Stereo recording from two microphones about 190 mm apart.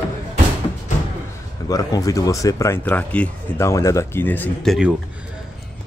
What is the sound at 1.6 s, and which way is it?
Speech, 20° left (ahead or behind).